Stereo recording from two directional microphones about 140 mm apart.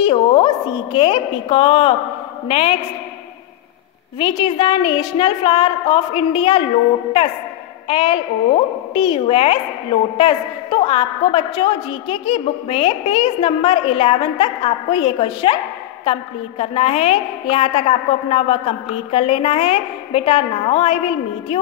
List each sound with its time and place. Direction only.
0.0 s a woman's voice: 40° left (ahead or behind)
4.2 s a woman's voice: 35° left (ahead or behind)
7.9 s a woman's voice: 40° left (ahead or behind)